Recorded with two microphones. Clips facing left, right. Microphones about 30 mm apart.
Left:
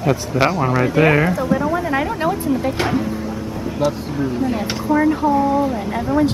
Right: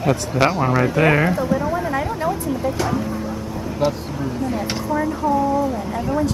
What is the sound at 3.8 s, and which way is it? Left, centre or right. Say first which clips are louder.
Speech: left 1 dB; right.